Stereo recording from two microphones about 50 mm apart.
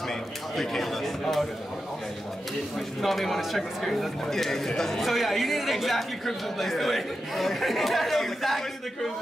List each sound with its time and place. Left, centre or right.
0.6 s speech: centre
3.0 s speech: centre